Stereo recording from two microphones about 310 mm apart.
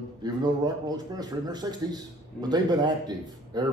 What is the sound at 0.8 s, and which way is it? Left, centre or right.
A man's voice, centre.